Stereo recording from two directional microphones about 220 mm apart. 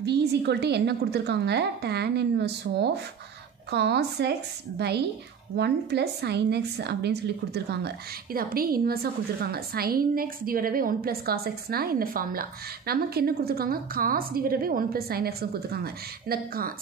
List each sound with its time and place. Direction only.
0.0 s a woman's voice: 50° right (ahead or behind)